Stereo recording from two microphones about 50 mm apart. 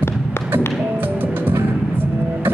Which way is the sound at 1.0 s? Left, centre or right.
Right.